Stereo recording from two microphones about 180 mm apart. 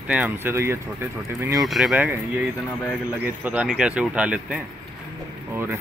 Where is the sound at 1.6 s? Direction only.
Centre (ahead or behind).